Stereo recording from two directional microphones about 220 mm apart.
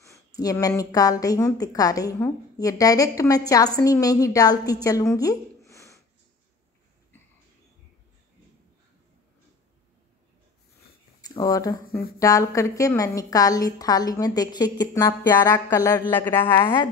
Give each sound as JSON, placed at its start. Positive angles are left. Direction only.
{"t": 0.4, "sound": "a woman's voice", "side_deg": 15}
{"t": 5.7, "sound": "a sound", "side_deg": 15}
{"t": 11.1, "sound": "a woman's voice", "side_deg": 15}